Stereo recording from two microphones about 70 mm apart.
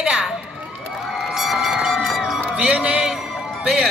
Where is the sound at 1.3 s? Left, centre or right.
Centre.